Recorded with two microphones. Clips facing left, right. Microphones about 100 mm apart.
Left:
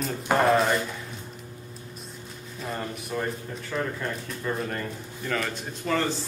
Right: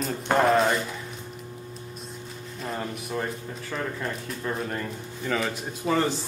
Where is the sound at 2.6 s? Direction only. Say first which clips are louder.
Right 1 dB; centre (ahead or behind).